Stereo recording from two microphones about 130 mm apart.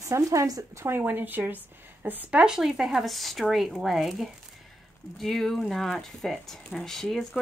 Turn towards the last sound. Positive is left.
turn(degrees=0)  # may be behind; listen again after turning